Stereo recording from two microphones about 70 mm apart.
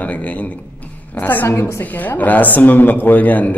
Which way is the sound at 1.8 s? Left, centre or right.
Left.